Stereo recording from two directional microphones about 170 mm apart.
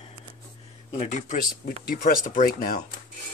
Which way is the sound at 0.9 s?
40° left (ahead or behind).